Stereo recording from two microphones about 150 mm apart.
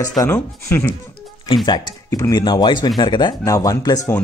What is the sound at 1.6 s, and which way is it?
Speech, 25° left (ahead or behind).